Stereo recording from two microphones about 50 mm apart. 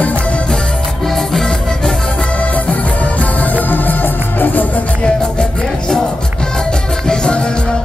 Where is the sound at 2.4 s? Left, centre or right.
Left.